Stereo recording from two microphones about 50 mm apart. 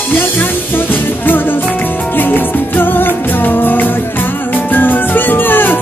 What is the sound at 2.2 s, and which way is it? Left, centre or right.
Music, left.